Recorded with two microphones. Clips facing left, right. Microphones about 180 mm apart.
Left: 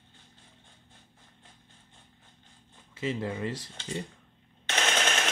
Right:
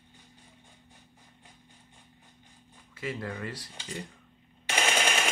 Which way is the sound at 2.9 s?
20° left (ahead or behind).